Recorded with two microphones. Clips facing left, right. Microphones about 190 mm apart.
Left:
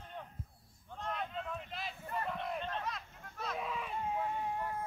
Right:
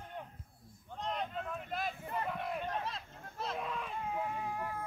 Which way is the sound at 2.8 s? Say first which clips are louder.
Even; 30° right (ahead or behind).